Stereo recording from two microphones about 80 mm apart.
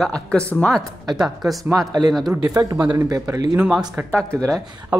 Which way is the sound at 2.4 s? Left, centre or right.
Right.